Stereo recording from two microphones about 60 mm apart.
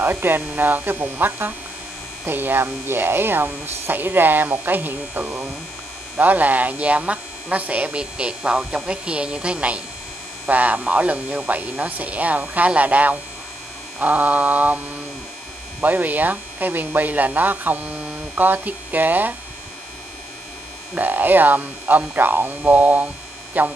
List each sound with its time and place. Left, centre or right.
0.0 s speech: right
15.8 s speech: right
20.9 s speech: right